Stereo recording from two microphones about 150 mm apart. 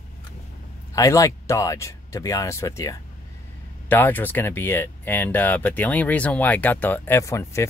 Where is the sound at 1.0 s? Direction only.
20° left (ahead or behind).